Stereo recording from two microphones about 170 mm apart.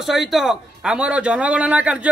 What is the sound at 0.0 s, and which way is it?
A man's voice, centre (ahead or behind).